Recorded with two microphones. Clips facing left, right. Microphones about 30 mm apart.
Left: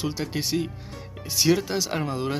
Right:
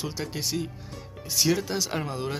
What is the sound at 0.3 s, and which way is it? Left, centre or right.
Speech, left.